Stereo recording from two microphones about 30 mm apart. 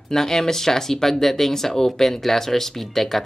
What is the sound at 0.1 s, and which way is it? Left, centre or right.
Speech, centre.